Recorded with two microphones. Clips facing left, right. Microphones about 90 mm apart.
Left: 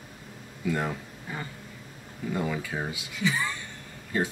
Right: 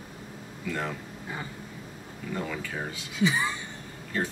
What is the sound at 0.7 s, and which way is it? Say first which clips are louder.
Speech: left 3 dB; 10° left (ahead or behind).